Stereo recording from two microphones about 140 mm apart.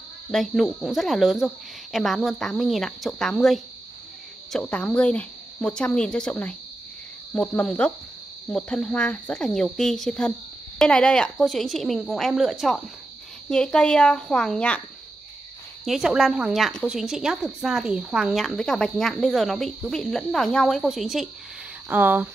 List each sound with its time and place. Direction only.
0.3 s speech: centre (ahead or behind)
15.8 s speech: 5° right (ahead or behind)
21.8 s speech: 15° right (ahead or behind)